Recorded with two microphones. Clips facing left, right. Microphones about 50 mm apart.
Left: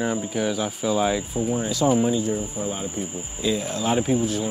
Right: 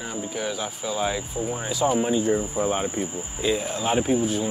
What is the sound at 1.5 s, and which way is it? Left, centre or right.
Speech, centre.